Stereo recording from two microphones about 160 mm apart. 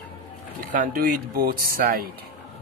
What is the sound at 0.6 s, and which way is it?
Speech, 60° right (ahead or behind).